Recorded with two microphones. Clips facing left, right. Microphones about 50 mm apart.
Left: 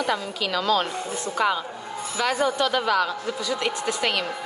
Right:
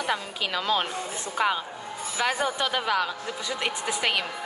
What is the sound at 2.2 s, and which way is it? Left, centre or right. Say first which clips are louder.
Speech: left 3 dB; centre.